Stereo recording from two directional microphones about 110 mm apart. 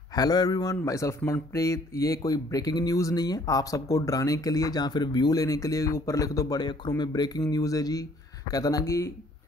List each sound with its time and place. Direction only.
0.1 s speech: 35° left (ahead or behind)